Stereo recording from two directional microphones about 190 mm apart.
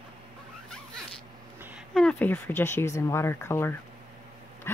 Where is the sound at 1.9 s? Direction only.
5° left (ahead or behind).